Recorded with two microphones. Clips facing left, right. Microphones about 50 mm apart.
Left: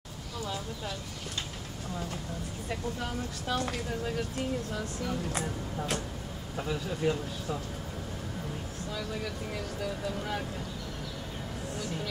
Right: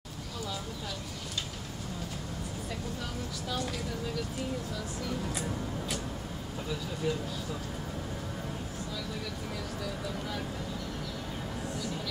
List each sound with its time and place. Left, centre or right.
3.4 s speech: left
7.0 s speech: left